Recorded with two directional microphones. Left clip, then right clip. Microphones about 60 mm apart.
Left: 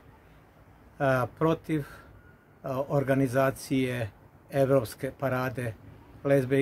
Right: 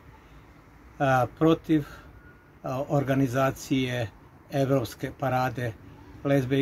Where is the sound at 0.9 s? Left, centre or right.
Left.